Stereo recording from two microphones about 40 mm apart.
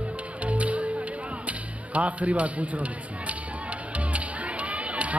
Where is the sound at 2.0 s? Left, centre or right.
Right.